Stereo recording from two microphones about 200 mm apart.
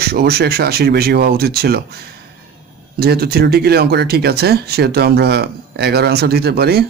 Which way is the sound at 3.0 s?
50° right (ahead or behind).